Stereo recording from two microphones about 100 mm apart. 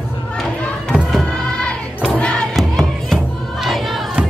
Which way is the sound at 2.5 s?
Centre (ahead or behind).